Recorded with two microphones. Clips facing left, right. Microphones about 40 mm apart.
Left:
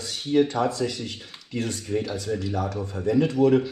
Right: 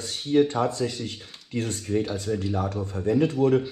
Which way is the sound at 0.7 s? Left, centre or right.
Left.